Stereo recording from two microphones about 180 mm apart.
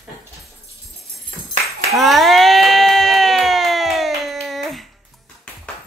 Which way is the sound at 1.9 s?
Centre (ahead or behind).